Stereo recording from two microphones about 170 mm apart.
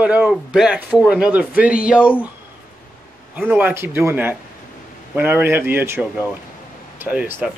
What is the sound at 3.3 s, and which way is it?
A man's voice, 10° right (ahead or behind).